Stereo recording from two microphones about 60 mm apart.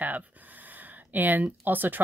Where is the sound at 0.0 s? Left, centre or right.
Right.